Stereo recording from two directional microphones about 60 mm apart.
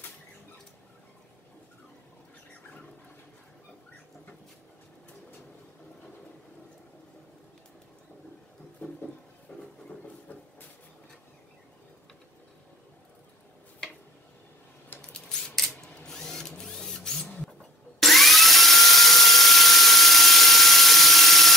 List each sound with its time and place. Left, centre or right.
8.8 s a sound: left
15.0 s scissors: centre
15.7 s mechanisms: centre
18.0 s vacuum cleaner: centre